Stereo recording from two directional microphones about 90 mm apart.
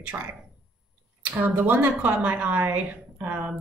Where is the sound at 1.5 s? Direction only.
20° right (ahead or behind).